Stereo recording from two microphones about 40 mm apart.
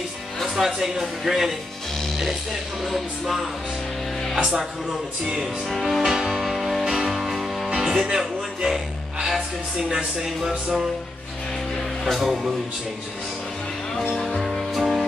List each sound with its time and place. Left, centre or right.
0.6 s speech: centre
2.8 s music: centre
4.4 s speech: centre
5.7 s music: centre
6.1 s music: centre
6.4 s music: centre
7.7 s music: centre
8.5 s speech: centre
12.0 s speech: centre
14.0 s music: centre